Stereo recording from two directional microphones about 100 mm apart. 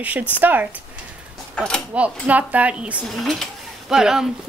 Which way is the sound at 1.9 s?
15° right (ahead or behind).